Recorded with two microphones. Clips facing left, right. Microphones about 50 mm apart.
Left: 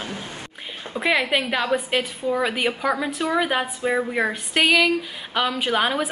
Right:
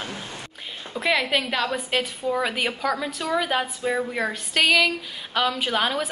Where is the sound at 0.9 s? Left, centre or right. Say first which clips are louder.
Left 2 dB; centre.